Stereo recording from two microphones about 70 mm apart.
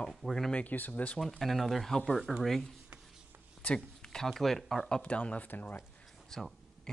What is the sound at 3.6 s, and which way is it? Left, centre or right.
Speech, centre.